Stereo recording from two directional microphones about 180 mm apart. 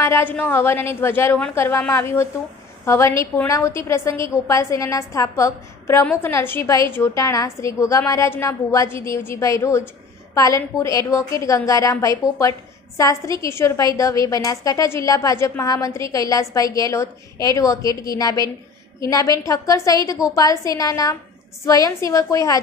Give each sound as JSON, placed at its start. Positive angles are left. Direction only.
{"t": 0.0, "sound": "a woman's voice", "side_deg": 10}